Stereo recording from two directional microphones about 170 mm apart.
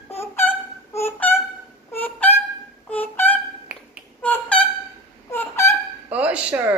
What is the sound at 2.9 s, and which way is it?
Music, 10° left (ahead or behind).